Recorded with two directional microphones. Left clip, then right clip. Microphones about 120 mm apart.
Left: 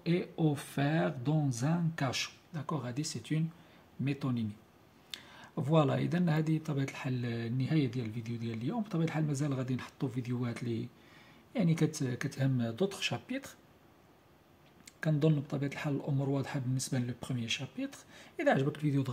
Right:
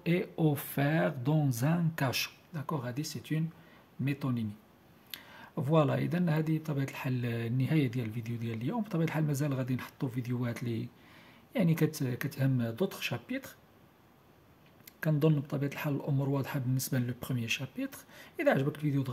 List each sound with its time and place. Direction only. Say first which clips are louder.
0.0 s speech: right 2 dB; 35° right (ahead or behind)
2.5 s speech: even; 15° right (ahead or behind)
15.0 s speech: right 2 dB; 20° right (ahead or behind)
18.7 s speech: even; centre (ahead or behind)